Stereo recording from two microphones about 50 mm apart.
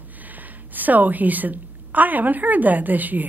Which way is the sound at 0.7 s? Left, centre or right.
Right.